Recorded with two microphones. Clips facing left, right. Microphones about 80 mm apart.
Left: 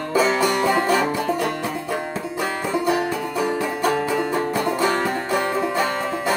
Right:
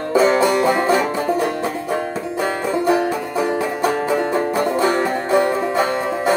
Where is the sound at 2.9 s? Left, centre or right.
Right.